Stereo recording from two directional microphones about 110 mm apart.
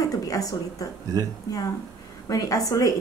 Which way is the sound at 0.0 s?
30° left (ahead or behind).